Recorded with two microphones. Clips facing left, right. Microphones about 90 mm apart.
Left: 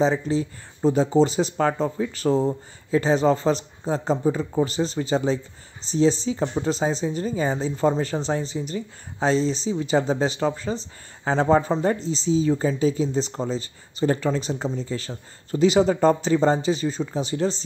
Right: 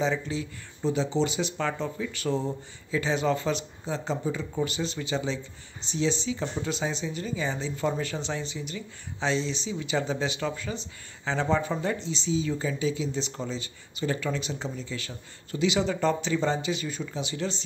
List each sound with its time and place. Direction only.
0.0 s speech: 35° left (ahead or behind)